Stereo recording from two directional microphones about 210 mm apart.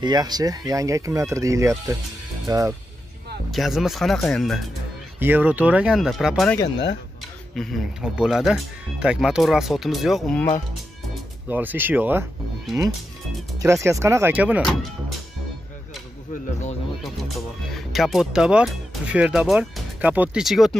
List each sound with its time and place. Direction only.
0.0 s speech: 20° right (ahead or behind)
3.5 s speech: centre (ahead or behind)
11.4 s speech: 10° right (ahead or behind)
17.7 s speech: centre (ahead or behind)